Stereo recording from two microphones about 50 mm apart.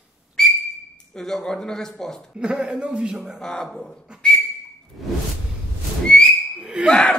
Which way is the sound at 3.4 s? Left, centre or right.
Centre.